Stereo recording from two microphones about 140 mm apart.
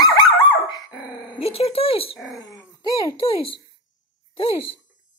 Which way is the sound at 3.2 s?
40° left (ahead or behind).